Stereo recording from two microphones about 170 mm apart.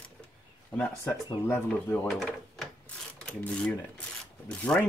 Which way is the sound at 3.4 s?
5° left (ahead or behind).